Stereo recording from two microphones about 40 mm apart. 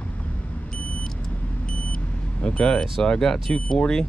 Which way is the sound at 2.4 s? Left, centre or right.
Left.